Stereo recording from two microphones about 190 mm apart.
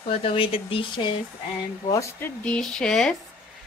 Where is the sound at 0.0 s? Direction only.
30° left (ahead or behind).